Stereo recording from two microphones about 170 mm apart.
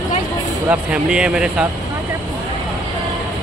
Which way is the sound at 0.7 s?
5° right (ahead or behind).